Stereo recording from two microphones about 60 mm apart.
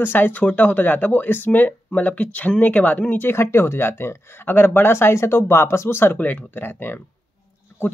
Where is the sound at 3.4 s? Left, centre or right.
Left.